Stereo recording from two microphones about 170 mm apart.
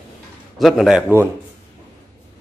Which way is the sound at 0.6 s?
Centre (ahead or behind).